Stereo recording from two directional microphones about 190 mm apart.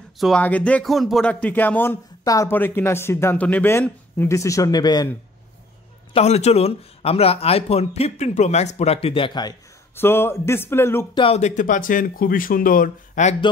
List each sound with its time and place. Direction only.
0.2 s speech: 5° left (ahead or behind); by 5.1 s 20° left (ahead or behind)
6.1 s speech: 35° left (ahead or behind)
9.9 s speech: 10° left (ahead or behind)
11.1 s speech: 35° left (ahead or behind)